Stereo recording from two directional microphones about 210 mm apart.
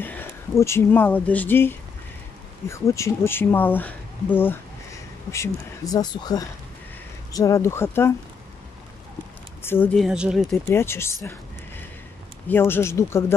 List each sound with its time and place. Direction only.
0.0 s speech: 10° left (ahead or behind)
9.6 s speech: 10° left (ahead or behind)
10.0 s speech: 5° right (ahead or behind)
10.7 s speech: 10° left (ahead or behind)
12.4 s speech: 10° left (ahead or behind)